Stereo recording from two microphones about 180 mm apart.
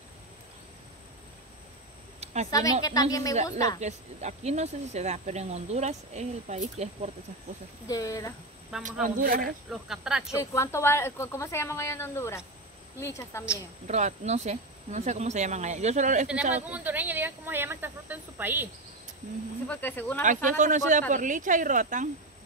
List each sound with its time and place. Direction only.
2.5 s a woman's voice: 20° left (ahead or behind)
3.8 s speech: 40° right (ahead or behind)
7.8 s a woman's voice: 20° left (ahead or behind)
8.7 s speech: 5° right (ahead or behind)
9.2 s speech: 55° right (ahead or behind)
9.7 s speech: 5° right (ahead or behind)
10.3 s a woman's voice: 15° left (ahead or behind)
13.8 s speech: 40° right (ahead or behind)
16.5 s speech: 10° right (ahead or behind)
19.7 s a woman's voice: 10° left (ahead or behind)
20.4 s a woman's voice: 45° right (ahead or behind)